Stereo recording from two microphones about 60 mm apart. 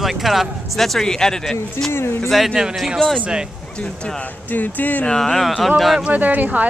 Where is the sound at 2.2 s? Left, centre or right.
Centre.